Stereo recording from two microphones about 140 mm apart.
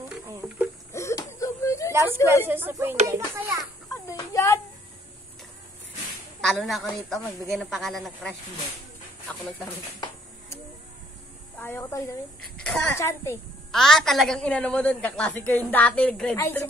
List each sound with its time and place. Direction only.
0.9 s wheeze: 20° left (ahead or behind)
2.4 s a child's voice: 15° right (ahead or behind)
3.9 s a sound: 25° left (ahead or behind)
6.4 s a woman's voice: centre (ahead or behind)
11.6 s a woman's voice: 20° left (ahead or behind)
12.5 s a woman's voice: 5° left (ahead or behind)
12.9 s a woman's voice: 20° left (ahead or behind)
13.7 s a woman's voice: 5° left (ahead or behind)